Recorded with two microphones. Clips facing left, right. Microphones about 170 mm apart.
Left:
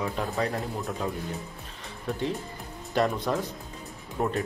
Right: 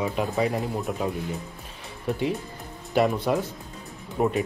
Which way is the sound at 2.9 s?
5° right (ahead or behind).